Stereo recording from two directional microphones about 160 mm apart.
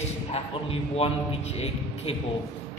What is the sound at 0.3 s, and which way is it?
A man's voice, 35° left (ahead or behind).